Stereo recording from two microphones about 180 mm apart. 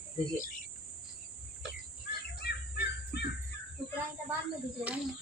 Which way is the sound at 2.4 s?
65° left (ahead or behind).